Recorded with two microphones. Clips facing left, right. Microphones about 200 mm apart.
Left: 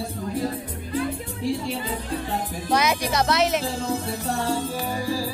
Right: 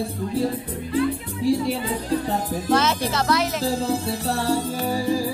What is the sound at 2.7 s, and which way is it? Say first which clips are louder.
Speech: right 1 dB; 15° left (ahead or behind).